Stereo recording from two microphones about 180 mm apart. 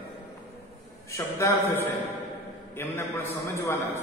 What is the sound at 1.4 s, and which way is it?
A man's voice, 15° left (ahead or behind).